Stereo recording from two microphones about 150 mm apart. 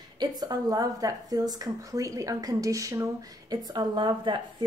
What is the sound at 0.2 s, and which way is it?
A woman's voice, 25° right (ahead or behind).